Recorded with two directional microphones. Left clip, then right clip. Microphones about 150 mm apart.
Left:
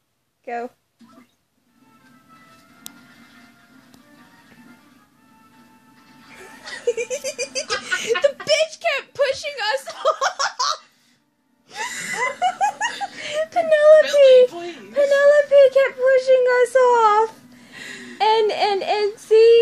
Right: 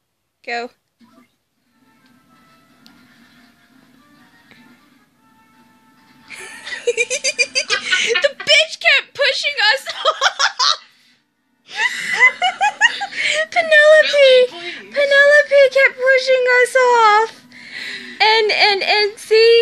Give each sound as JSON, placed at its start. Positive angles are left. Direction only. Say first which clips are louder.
{"t": 6.3, "sound": "chuckle", "louder": "right 9 dB", "side_deg": -30}
{"t": 6.8, "sound": "speech", "louder": "right 5 dB", "side_deg": -10}